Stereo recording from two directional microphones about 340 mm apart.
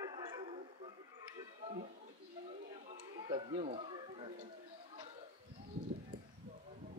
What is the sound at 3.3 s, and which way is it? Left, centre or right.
Speech, centre.